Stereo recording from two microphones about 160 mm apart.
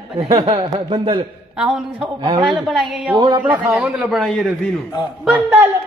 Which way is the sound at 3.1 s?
25° right (ahead or behind).